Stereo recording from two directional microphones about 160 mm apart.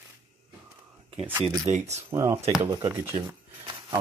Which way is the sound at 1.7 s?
45° right (ahead or behind).